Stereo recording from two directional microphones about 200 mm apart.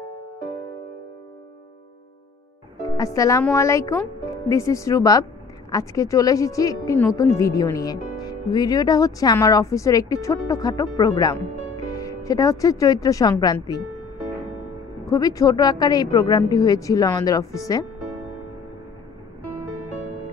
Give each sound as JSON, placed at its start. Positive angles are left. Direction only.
{"t": 3.0, "sound": "speech", "side_deg": 15}
{"t": 15.0, "sound": "speech", "side_deg": 15}